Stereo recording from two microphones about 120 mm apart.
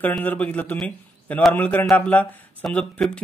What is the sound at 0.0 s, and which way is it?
Speech, 15° left (ahead or behind).